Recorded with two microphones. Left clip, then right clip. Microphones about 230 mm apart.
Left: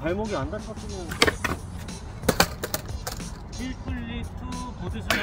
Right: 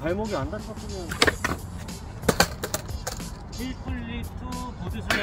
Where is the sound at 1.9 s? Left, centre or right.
Centre.